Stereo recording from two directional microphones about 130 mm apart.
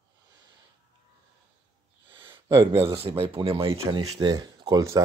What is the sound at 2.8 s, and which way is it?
Speech, 45° right (ahead or behind).